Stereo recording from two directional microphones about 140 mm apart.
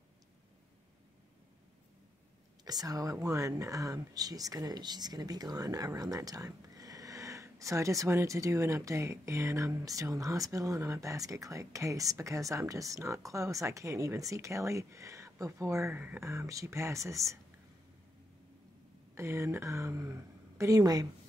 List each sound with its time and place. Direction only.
2.6 s speech: 25° right (ahead or behind)
19.1 s speech: 20° right (ahead or behind)